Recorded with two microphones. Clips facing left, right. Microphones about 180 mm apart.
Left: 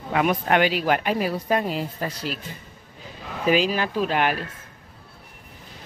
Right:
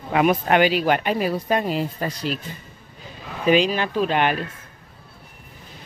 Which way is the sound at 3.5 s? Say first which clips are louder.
Right 3 dB; 5° left (ahead or behind).